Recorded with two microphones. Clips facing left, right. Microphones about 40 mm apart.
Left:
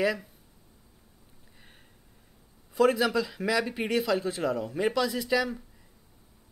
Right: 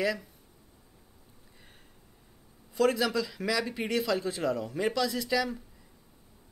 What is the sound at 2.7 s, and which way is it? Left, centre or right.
Speech, centre.